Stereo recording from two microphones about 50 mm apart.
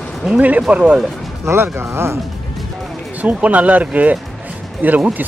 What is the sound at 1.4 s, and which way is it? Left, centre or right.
Speech, right.